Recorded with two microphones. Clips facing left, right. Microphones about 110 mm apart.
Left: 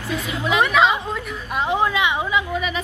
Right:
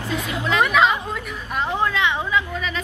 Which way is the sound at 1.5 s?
15° left (ahead or behind).